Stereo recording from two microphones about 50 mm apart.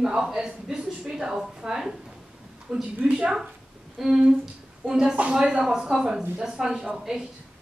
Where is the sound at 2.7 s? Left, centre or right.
Right.